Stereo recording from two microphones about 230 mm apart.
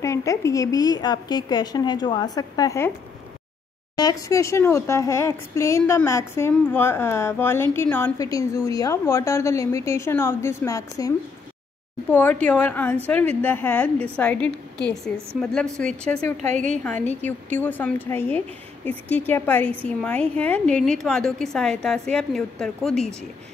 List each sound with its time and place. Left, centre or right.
0.0 s speech: centre
3.9 s a woman's voice: centre
16.5 s a woman's voice: right
17.0 s a woman's voice: centre